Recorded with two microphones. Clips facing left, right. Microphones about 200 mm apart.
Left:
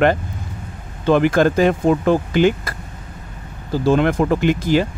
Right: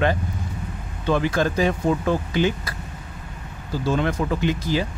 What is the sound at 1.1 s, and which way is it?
Speech, 65° left (ahead or behind).